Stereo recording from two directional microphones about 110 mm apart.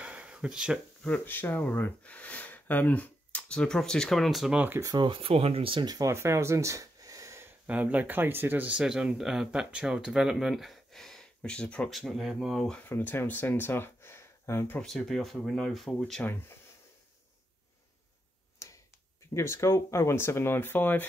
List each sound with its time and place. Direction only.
0.0 s a sound: 10° right (ahead or behind)
1.0 s speech: 15° left (ahead or behind); by 4.7 s 10° right (ahead or behind)
4.9 s speech: 50° right (ahead or behind)
5.9 s speech: 30° right (ahead or behind)
7.6 s speech: 15° right (ahead or behind)
12.7 s speech: 15° left (ahead or behind)
14.8 s speech: 5° left (ahead or behind)
16.3 s speech: 20° left (ahead or behind)
18.6 s finger snapping: 30° left (ahead or behind)
19.3 s speech: 25° left (ahead or behind)